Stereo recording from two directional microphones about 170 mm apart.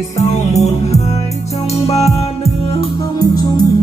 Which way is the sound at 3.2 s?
25° left (ahead or behind).